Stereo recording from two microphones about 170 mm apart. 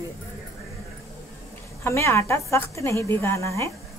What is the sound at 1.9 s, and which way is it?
A woman's voice, 15° left (ahead or behind).